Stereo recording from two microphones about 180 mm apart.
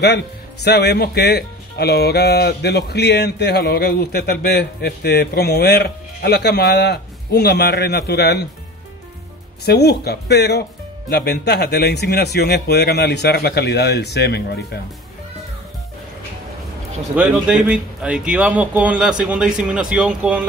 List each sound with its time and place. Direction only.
0.7 s speech: 65° left (ahead or behind)
9.7 s speech: 65° left (ahead or behind)
17.1 s speech: 5° right (ahead or behind)